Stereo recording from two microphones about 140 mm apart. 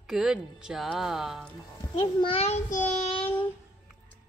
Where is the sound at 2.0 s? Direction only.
40° left (ahead or behind).